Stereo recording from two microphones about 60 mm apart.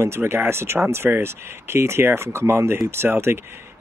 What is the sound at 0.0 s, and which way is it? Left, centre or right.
A man's voice, right.